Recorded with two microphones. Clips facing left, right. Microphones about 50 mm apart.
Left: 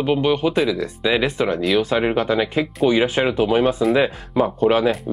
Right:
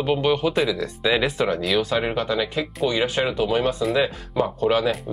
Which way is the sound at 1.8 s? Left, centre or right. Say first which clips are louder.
Left 4 dB; centre.